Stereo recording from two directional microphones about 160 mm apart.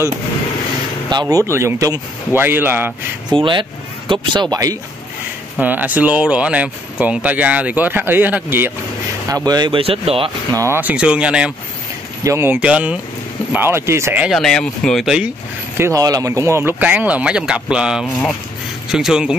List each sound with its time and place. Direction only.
1.1 s speech: 20° right (ahead or behind)
3.3 s speech: 30° right (ahead or behind)
5.6 s speech: 10° right (ahead or behind)
9.3 s speech: 25° right (ahead or behind)
10.5 s speech: 15° right (ahead or behind)
12.2 s speech: 15° right (ahead or behind)
14.3 s speech: 5° left (ahead or behind)
15.8 s speech: 20° right (ahead or behind); by 19.3 s 5° right (ahead or behind)